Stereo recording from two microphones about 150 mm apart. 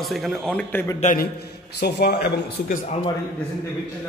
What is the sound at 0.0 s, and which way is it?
Speech, centre (ahead or behind).